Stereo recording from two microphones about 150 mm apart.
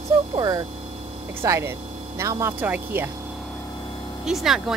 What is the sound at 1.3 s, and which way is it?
Speech, 15° right (ahead or behind).